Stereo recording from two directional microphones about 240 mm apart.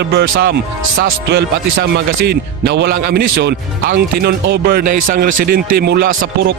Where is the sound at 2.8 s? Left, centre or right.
Right.